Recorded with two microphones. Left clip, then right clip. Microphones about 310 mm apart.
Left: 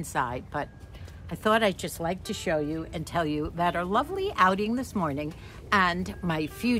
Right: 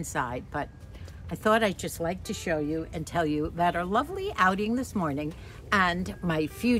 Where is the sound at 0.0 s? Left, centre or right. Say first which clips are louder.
Left 2 dB; centre.